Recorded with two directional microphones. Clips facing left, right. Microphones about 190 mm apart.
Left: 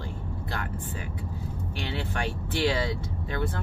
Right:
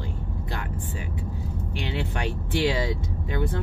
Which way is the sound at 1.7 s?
20° right (ahead or behind).